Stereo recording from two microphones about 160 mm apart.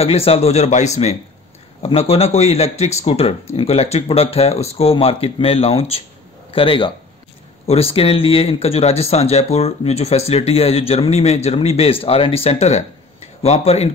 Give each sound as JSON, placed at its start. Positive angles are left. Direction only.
{"t": 0.0, "sound": "speech", "side_deg": 40}